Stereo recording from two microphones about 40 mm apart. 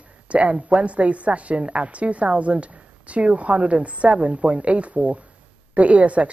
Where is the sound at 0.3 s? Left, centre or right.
Right.